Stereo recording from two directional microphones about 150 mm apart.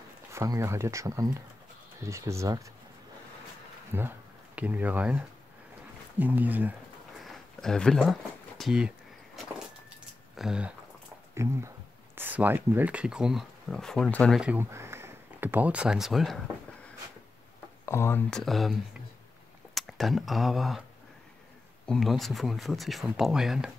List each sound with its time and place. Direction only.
0.3 s speech: 20° right (ahead or behind)
3.9 s speech: 15° right (ahead or behind)
7.2 s a sound: 5° left (ahead or behind)
10.3 s speech: 5° right (ahead or behind)
11.4 s speech: 15° right (ahead or behind); by 14.4 s 5° left (ahead or behind)
14.4 s speech: 15° right (ahead or behind)
17.8 s speech: 15° left (ahead or behind)
18.3 s speech: centre (ahead or behind)
21.8 s speech: centre (ahead or behind)